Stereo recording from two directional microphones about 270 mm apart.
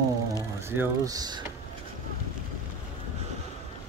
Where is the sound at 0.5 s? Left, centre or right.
Centre.